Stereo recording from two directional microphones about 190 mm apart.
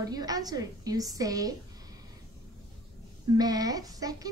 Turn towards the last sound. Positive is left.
turn(degrees=-20)  # may be behind; listen again after turning